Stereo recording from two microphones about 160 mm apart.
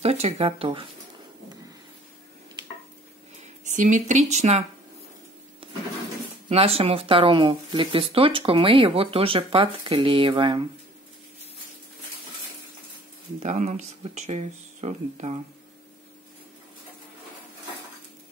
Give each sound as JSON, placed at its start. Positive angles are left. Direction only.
{"t": 0.0, "sound": "speech", "side_deg": -40}
{"t": 3.6, "sound": "speech", "side_deg": -50}
{"t": 5.6, "sound": "a sound", "side_deg": -35}
{"t": 6.5, "sound": "speech", "side_deg": -40}
{"t": 13.4, "sound": "speech", "side_deg": -45}